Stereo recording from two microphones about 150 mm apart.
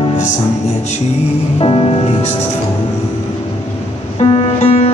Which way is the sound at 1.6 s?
40° left (ahead or behind).